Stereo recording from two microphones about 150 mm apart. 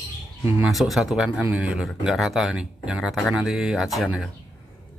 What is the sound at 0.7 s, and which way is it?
Speech, centre (ahead or behind).